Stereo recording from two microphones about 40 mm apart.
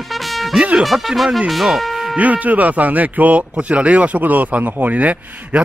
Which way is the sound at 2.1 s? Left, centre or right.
Right.